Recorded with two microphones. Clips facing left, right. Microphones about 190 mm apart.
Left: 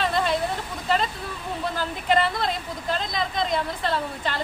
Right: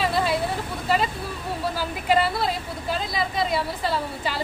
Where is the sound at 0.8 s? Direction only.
5° right (ahead or behind).